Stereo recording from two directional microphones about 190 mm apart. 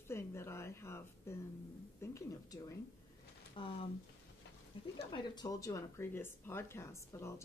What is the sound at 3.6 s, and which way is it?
Speech, 30° left (ahead or behind).